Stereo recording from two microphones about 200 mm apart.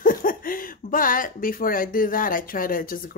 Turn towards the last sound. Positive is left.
turn(degrees=45)  # may be behind; listen again after turning